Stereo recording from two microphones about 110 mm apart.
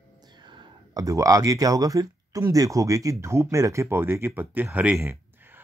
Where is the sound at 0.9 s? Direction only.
30° right (ahead or behind).